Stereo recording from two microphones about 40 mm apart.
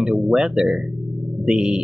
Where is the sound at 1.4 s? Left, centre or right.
Right.